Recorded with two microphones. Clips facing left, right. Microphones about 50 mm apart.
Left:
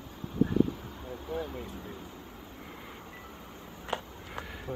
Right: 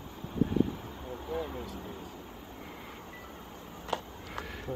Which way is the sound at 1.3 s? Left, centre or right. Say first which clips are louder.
Even; centre.